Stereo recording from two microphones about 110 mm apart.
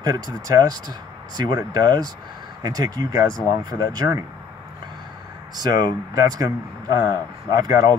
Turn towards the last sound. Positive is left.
turn(degrees=-35)  # may be behind; listen again after turning